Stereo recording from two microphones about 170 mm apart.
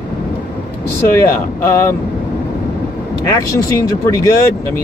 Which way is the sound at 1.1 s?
15° left (ahead or behind).